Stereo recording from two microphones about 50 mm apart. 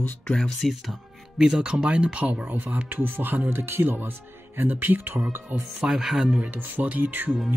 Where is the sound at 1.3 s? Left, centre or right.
Centre; by 5.1 s right.